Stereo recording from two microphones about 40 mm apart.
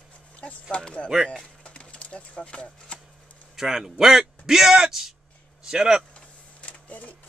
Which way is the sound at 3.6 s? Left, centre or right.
Centre.